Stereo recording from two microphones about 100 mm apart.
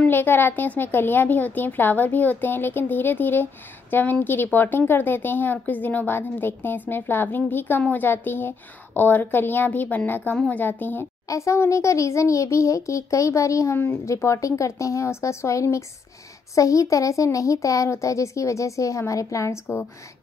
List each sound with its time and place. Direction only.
0.0 s a woman's voice: 20° left (ahead or behind)
11.2 s speech: 30° left (ahead or behind)